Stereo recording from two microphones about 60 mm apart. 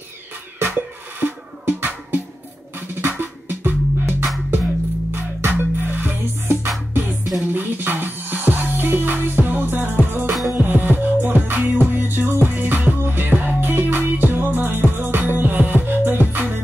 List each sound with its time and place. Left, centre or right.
0.6 s music: right
5.5 s music: right
6.4 s music: right